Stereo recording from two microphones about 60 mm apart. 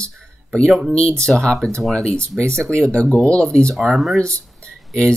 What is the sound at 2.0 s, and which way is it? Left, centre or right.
Speech, centre.